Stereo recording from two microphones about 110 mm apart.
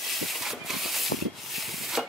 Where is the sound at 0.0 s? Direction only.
Centre (ahead or behind).